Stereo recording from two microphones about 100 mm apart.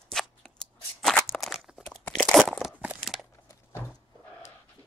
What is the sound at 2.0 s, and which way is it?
Crunch, 15° left (ahead or behind).